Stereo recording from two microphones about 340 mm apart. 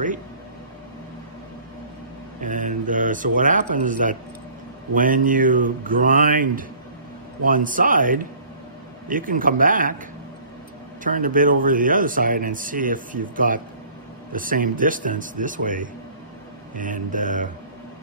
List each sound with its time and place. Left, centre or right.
2.4 s speech: right
11.1 s speech: right